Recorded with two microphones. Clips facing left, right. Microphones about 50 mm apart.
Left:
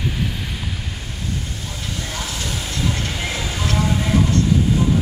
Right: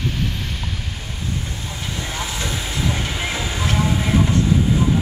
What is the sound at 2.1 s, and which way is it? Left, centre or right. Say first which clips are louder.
Music: right 2 dB; right.